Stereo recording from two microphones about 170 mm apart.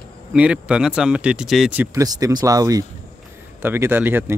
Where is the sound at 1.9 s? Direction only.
20° right (ahead or behind).